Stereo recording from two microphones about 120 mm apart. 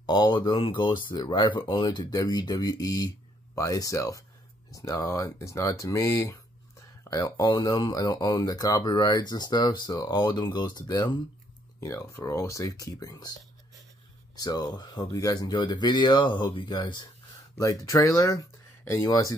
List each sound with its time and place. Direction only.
0.0 s speech: 40° left (ahead or behind)
11.8 s speech: 20° left (ahead or behind)
14.3 s speech: 35° left (ahead or behind)